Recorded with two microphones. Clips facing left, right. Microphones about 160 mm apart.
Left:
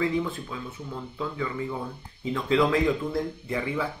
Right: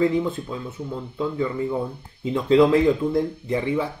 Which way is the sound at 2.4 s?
25° right (ahead or behind).